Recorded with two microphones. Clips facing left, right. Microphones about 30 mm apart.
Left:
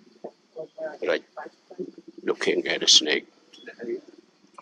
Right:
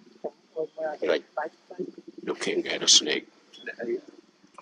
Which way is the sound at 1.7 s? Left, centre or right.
Right.